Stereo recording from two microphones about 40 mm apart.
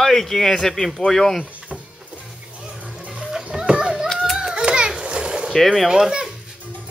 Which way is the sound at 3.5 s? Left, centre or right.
Right.